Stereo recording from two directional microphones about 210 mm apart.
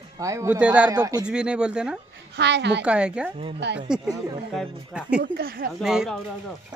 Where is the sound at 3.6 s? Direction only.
55° right (ahead or behind).